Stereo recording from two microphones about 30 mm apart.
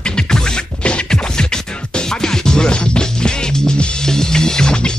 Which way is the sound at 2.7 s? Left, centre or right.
Left.